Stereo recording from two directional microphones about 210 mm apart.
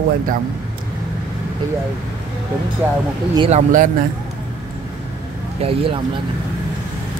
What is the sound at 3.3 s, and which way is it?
Speech, 30° right (ahead or behind).